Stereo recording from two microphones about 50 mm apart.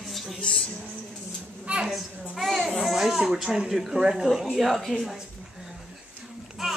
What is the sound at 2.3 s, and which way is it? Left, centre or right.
Speech, centre.